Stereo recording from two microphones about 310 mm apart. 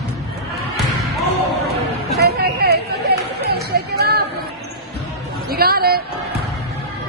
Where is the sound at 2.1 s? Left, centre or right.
Right.